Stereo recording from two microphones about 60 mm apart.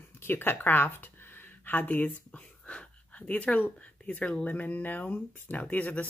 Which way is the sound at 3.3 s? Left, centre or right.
Left.